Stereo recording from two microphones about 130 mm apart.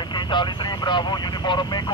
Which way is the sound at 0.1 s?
35° left (ahead or behind).